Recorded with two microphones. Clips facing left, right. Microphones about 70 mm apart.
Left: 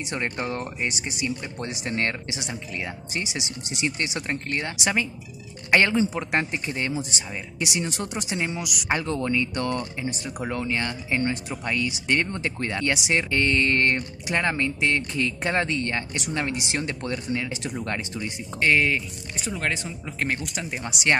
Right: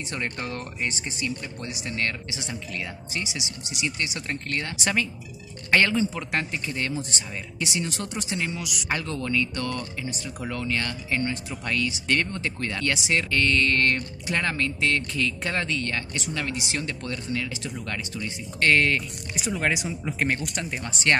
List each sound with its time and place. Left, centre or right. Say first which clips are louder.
0.1 s a woman's voice: left 3 dB; left
1.6 s a woman's voice: left 3 dB; left
18.6 s speech: even; centre
19.3 s speech: right 2 dB; centre